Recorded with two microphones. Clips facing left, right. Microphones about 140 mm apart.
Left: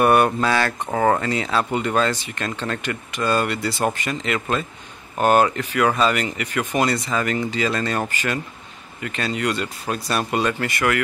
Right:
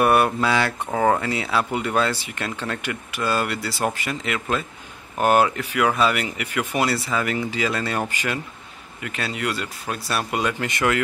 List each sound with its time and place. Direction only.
0.0 s speech: 5° right (ahead or behind)
10.7 s speech: 20° right (ahead or behind)